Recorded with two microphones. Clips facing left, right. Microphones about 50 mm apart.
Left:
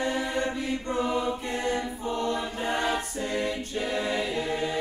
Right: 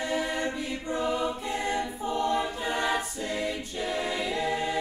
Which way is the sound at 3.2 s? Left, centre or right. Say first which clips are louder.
Left 2 dB; left.